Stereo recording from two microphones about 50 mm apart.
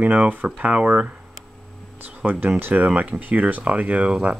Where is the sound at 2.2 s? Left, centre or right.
Right.